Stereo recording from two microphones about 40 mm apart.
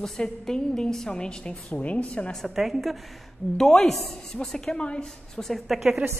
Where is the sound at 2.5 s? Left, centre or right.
Centre.